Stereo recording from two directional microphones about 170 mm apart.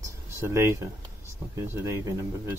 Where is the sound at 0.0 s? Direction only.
15° right (ahead or behind).